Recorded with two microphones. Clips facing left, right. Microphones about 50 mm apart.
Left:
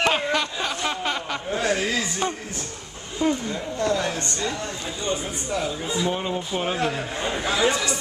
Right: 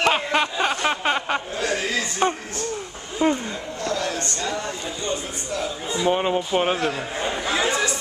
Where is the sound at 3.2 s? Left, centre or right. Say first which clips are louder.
Right 2 dB; right.